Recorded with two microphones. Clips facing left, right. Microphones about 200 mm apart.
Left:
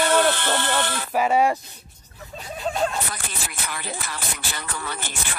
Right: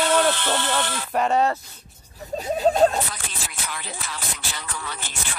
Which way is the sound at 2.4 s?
40° right (ahead or behind).